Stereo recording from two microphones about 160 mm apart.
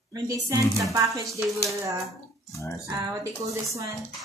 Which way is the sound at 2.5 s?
20° left (ahead or behind).